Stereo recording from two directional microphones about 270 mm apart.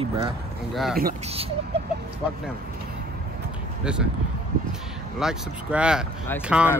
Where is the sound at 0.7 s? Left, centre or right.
Centre.